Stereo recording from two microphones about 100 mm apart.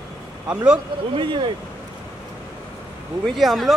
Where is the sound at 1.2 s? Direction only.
55° right (ahead or behind).